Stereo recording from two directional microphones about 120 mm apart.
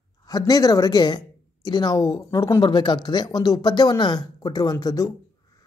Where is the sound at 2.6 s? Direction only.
40° left (ahead or behind).